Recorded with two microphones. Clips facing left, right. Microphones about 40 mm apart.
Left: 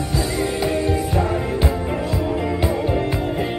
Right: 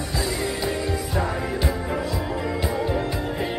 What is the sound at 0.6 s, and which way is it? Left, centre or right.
Music, left.